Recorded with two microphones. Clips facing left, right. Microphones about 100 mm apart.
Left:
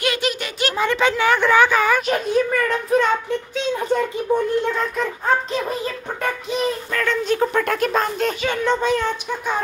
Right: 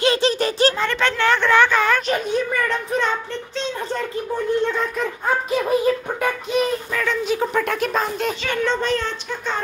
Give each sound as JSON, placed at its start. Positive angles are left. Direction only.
{"t": 0.0, "sound": "a sound", "side_deg": -30}
{"t": 0.7, "sound": "a woman's voice", "side_deg": 10}
{"t": 4.7, "sound": "speech", "side_deg": 0}
{"t": 5.5, "sound": "speech", "side_deg": -10}
{"t": 8.5, "sound": "a woman's voice", "side_deg": 15}